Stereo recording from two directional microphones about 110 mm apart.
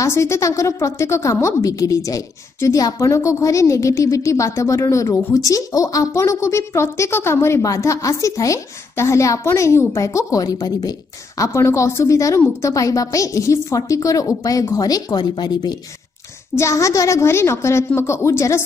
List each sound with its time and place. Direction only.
0.0 s a woman's voice: 25° left (ahead or behind); by 15.7 s 40° left (ahead or behind)
16.5 s a woman's voice: 30° left (ahead or behind)